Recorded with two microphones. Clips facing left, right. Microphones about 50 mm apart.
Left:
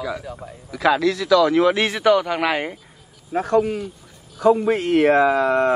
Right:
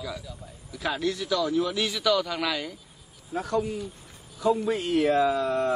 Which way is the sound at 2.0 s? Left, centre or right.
Left.